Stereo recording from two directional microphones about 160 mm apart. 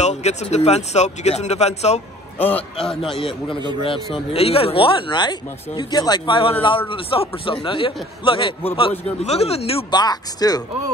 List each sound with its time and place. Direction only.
0.0 s speech: 45° left (ahead or behind)
2.3 s a man's voice: 10° left (ahead or behind)
3.2 s a man's voice: 30° left (ahead or behind)